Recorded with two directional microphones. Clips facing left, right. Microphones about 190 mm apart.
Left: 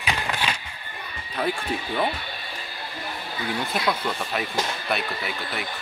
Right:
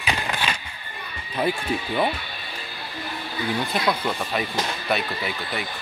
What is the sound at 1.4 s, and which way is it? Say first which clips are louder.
Speech: right 2 dB; 10° right (ahead or behind).